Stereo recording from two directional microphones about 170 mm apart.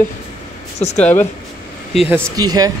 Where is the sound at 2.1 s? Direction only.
20° right (ahead or behind).